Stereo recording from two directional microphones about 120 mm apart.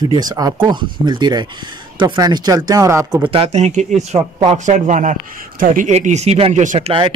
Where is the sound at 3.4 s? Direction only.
70° right (ahead or behind).